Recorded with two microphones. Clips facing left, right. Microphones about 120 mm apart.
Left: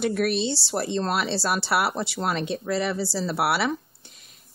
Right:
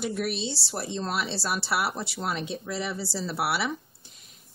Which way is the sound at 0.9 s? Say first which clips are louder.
Left 4 dB; 70° left (ahead or behind).